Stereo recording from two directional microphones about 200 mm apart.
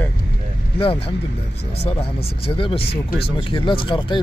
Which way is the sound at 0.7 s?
30° left (ahead or behind).